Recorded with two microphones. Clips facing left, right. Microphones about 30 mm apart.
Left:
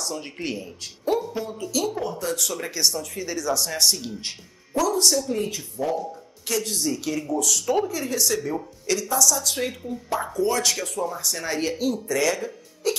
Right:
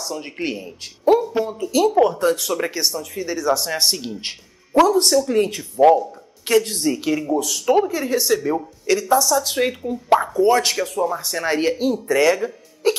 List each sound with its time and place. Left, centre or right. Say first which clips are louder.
0.0 s speech: right 2 dB; centre
0.4 s speech: right 4 dB; right
2.0 s speech: right 12 dB; right
2.3 s speech: right 5 dB; right
2.8 s a woman's voice: right 1 dB; centre; by 5.1 s right
5.3 s speech: right 7 dB; right
5.6 s speech: right 14 dB; right
6.4 s speech: right 8 dB; right; by 9.0 s centre
9.0 s a woman's voice: right 5 dB; right